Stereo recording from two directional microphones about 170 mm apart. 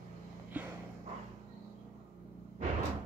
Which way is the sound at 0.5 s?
10° right (ahead or behind).